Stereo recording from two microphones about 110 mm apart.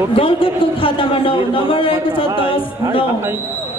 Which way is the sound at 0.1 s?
55° left (ahead or behind).